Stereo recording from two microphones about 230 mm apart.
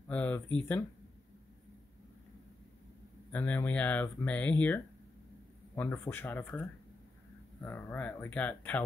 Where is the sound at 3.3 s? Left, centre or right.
Centre.